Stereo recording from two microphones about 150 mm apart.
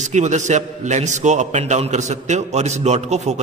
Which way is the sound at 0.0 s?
50° right (ahead or behind).